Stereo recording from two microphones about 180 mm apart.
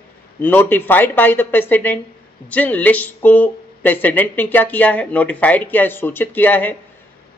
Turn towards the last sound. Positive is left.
turn(degrees=10)  # may be behind; listen again after turning